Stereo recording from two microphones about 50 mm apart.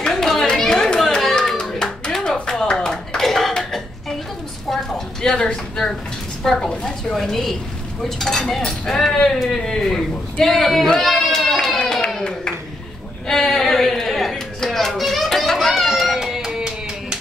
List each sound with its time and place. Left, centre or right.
0.1 s children playing: centre
0.6 s chatter: centre
1.2 s hands: centre
1.6 s clapping: centre
4.6 s a sound: centre
5.3 s a woman's voice: centre
14.3 s children playing: centre